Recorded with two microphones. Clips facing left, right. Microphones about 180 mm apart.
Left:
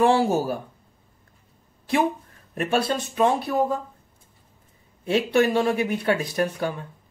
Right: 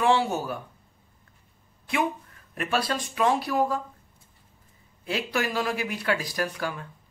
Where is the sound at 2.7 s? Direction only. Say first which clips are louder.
Left 4 dB; 25° left (ahead or behind).